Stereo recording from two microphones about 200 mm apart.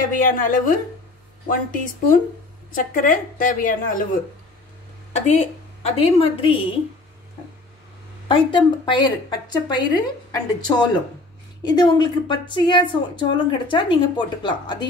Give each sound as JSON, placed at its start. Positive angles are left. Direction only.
{"t": 0.0, "sound": "a woman's voice", "side_deg": 40}
{"t": 5.1, "sound": "a woman's voice", "side_deg": 35}
{"t": 8.3, "sound": "a woman's voice", "side_deg": 25}